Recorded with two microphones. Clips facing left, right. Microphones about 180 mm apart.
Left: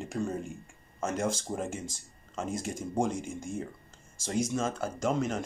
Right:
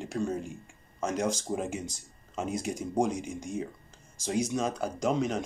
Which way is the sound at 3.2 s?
50° left (ahead or behind).